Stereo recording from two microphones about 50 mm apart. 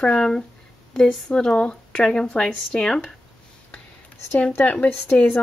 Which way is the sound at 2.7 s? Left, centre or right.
Centre.